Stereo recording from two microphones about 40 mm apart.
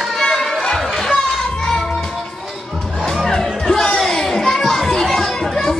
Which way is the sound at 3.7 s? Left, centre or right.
Centre.